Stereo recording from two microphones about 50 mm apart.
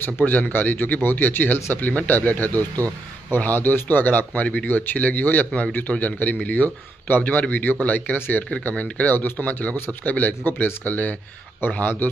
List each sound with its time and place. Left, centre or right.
0.2 s speech: left